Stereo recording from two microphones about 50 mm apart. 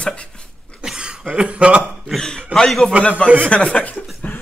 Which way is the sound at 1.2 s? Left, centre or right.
Centre.